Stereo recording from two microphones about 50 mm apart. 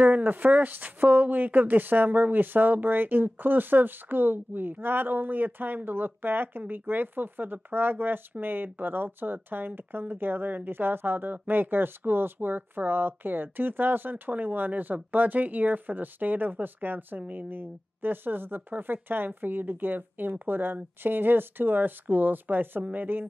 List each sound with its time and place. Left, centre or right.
0.0 s speech: right